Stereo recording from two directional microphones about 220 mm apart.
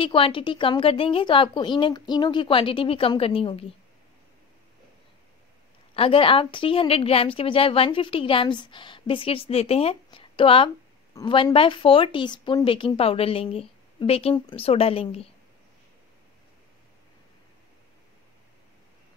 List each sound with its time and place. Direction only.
0.0 s a woman's voice: 25° left (ahead or behind)
5.9 s a woman's voice: 25° left (ahead or behind)